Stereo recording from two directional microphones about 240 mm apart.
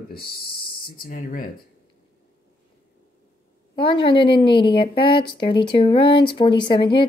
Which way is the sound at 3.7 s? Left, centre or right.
Left.